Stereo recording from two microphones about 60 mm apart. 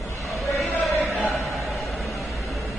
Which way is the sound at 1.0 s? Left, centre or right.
Right.